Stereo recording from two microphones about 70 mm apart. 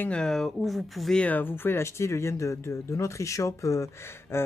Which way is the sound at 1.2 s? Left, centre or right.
Left.